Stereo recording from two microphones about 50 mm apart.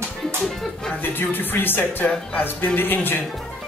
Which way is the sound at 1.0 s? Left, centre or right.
Left.